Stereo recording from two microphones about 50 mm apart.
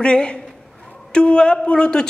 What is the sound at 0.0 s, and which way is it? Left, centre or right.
A woman's voice, centre.